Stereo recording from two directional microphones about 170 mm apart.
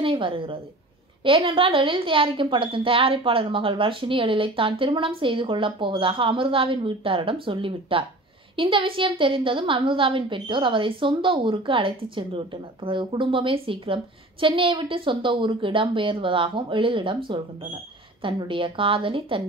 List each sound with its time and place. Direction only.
0.0 s a woman's voice: 30° right (ahead or behind)
18.2 s a woman's voice: 30° right (ahead or behind)